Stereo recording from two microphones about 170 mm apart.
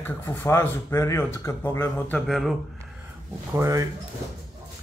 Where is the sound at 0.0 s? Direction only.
10° left (ahead or behind).